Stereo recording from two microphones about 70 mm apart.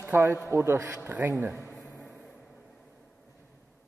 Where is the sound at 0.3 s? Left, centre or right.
Right.